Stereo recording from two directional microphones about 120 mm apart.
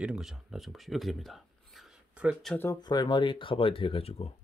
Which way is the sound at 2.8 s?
40° left (ahead or behind).